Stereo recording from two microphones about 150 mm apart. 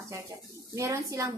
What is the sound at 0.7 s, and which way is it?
Speech, 20° right (ahead or behind).